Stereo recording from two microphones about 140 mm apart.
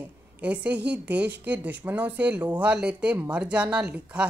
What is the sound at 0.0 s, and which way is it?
A woman's voice, 10° right (ahead or behind).